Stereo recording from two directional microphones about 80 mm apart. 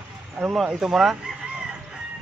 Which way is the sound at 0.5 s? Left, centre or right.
Centre.